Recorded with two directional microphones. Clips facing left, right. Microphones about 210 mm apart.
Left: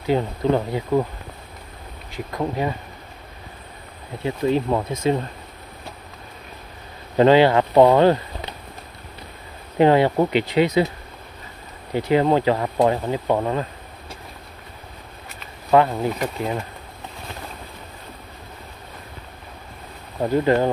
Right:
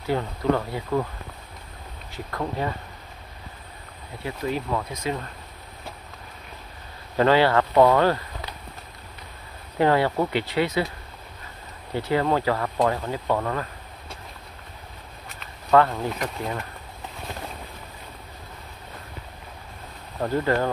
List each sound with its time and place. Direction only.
0.0 s speech: 20° left (ahead or behind)
2.1 s speech: 15° left (ahead or behind)
4.2 s speech: 25° left (ahead or behind)
7.2 s speech: 20° left (ahead or behind)
9.8 s speech: 20° left (ahead or behind)
11.9 s speech: 15° left (ahead or behind)
15.7 s speech: 15° left (ahead or behind)
16.1 s speech: 5° left (ahead or behind)
20.2 s speech: 15° left (ahead or behind)